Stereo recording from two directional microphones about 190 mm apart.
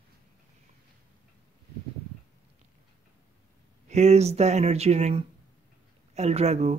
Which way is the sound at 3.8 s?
35° right (ahead or behind).